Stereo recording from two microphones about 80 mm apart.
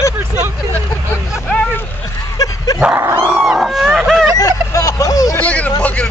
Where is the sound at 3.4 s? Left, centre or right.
Centre.